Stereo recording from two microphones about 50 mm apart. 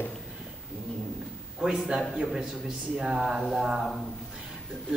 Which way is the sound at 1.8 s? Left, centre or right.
Centre.